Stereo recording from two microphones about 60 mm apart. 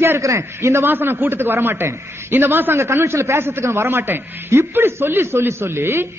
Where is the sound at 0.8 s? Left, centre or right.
Right.